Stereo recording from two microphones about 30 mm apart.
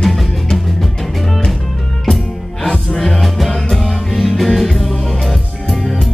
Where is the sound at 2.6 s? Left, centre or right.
Centre.